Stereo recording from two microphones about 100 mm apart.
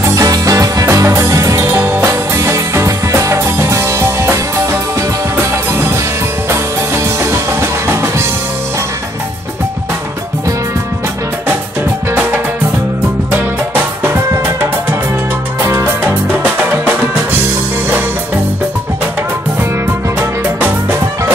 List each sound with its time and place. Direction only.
0.0 s music: 35° right (ahead or behind)
7.9 s music: 25° right (ahead or behind)
13.3 s music: 20° right (ahead or behind)